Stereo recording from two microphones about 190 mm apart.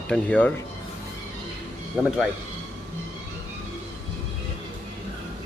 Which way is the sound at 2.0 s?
Centre (ahead or behind).